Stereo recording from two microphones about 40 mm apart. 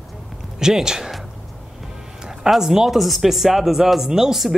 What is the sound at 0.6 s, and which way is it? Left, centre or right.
Speech, centre.